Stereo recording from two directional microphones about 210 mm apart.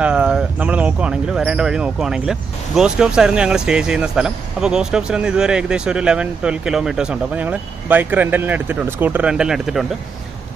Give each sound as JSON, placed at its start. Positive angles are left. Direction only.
{"t": 0.0, "sound": "speech", "side_deg": -5}